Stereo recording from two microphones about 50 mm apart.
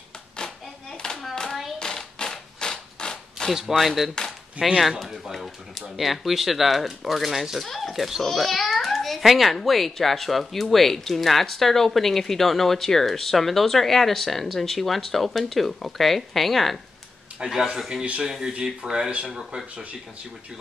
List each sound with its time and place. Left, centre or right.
1.3 s hands: centre
1.8 s a sound: centre
3.7 s a child's voice: centre
17.4 s speech: centre